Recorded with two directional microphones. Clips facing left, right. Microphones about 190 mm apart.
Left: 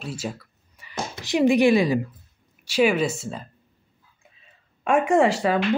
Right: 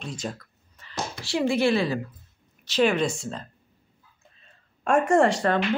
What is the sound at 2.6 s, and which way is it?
Speech, 10° left (ahead or behind).